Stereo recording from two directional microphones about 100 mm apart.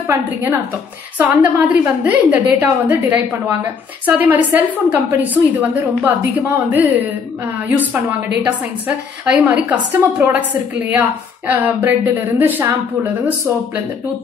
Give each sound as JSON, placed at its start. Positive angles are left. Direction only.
{"t": 0.1, "sound": "a woman's voice", "side_deg": -25}
{"t": 11.4, "sound": "a woman's voice", "side_deg": -15}